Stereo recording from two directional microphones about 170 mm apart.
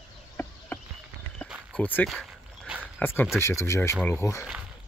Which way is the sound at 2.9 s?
10° left (ahead or behind).